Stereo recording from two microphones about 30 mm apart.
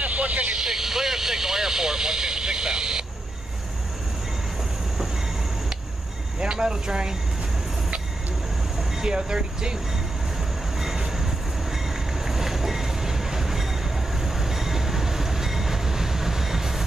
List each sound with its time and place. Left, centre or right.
0.0 s vehicle: right
0.6 s vehicle: centre
6.4 s speech: right
9.0 s speech: right
10.8 s train: centre